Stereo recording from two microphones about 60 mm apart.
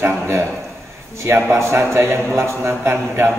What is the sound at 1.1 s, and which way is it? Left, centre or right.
A man's voice, right.